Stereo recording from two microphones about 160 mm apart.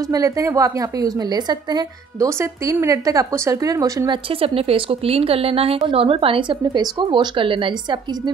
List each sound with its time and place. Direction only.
0.1 s speech: 20° right (ahead or behind)
4.3 s a woman's voice: 35° right (ahead or behind)